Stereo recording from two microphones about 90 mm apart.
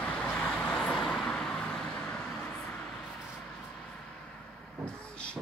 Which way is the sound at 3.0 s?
10° right (ahead or behind).